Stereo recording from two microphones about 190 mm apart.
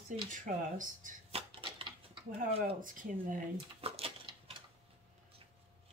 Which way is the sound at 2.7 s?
45° right (ahead or behind).